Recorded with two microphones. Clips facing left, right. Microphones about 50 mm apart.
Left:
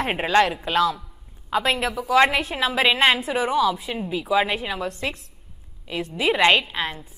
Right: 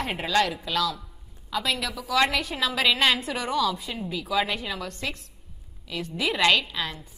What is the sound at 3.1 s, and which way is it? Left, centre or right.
A woman's voice, left.